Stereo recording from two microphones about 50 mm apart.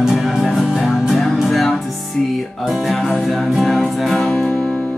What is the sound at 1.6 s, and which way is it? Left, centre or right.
Music, centre.